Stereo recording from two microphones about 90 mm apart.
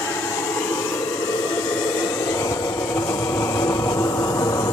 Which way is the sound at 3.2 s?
25° left (ahead or behind).